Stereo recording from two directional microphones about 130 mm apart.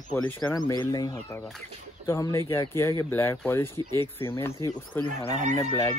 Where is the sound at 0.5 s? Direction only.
30° left (ahead or behind).